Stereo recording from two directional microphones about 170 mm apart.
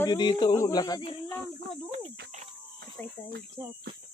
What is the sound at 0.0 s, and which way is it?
Speech, 25° left (ahead or behind).